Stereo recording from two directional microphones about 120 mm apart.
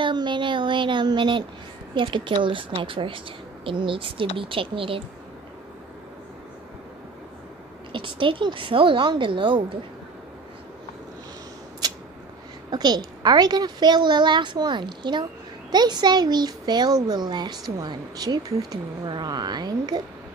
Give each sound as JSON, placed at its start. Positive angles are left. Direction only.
{"t": 0.0, "sound": "a woman's voice", "side_deg": -40}
{"t": 7.9, "sound": "a woman's voice", "side_deg": -45}
{"t": 11.8, "sound": "a sound", "side_deg": -35}
{"t": 12.7, "sound": "speech", "side_deg": -35}